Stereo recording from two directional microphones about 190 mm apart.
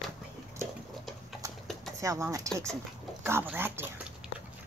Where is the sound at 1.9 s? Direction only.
15° right (ahead or behind).